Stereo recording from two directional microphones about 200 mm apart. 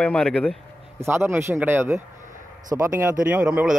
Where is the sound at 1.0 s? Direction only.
10° right (ahead or behind).